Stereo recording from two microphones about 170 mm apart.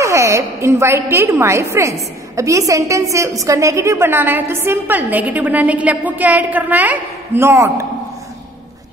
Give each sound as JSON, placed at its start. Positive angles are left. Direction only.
{"t": 0.0, "sound": "a woman's voice", "side_deg": -15}